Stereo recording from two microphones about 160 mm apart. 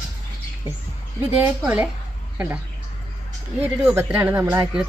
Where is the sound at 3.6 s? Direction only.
15° right (ahead or behind).